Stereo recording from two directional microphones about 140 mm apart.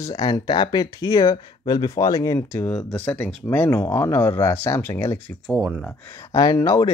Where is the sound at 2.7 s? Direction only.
5° left (ahead or behind).